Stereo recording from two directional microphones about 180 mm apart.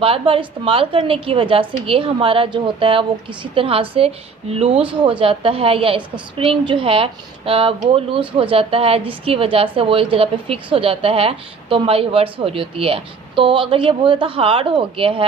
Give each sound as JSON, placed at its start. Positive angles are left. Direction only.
{"t": 0.0, "sound": "a woman's voice", "side_deg": -30}